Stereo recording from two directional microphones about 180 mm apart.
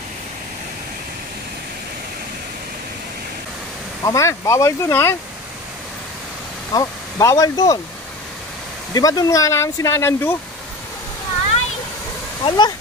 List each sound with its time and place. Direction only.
4.0 s speech: 15° left (ahead or behind)
6.7 s speech: 20° left (ahead or behind)
8.9 s speech: 20° left (ahead or behind)
12.4 s speech: 25° left (ahead or behind)